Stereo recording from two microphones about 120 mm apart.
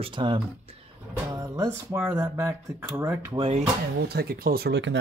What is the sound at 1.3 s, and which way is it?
Music, 25° right (ahead or behind).